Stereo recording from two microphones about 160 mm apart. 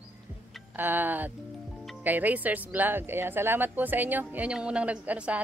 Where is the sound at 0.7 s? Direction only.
10° right (ahead or behind).